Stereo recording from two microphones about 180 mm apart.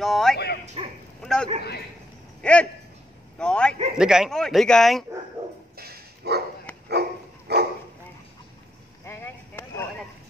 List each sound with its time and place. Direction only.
0.0 s speech: centre (ahead or behind)
0.8 s bow-wow: 30° right (ahead or behind)
1.2 s a man's voice: centre (ahead or behind)
5.8 s dog: 60° right (ahead or behind)
9.0 s a sound: 15° left (ahead or behind)